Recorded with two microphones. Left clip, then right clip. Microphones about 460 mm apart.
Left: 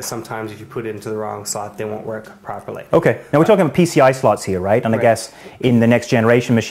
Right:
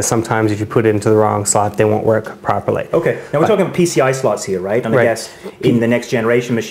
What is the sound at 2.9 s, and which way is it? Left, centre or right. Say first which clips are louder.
Speech: left 7 dB; left.